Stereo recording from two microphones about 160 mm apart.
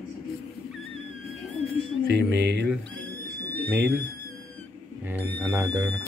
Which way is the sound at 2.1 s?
90° right.